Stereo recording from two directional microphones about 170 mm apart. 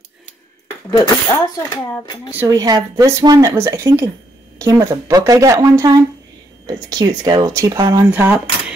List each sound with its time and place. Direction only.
0.9 s speech: 20° left (ahead or behind)
2.3 s speech: 20° right (ahead or behind)
8.1 s speech: 10° right (ahead or behind)